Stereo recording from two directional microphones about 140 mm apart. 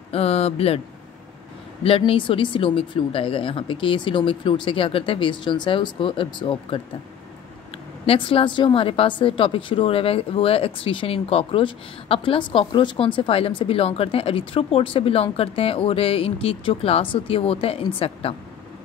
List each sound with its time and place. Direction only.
0.1 s speech: 45° left (ahead or behind)
1.8 s a woman's voice: 40° left (ahead or behind)
8.1 s a woman's voice: 40° left (ahead or behind)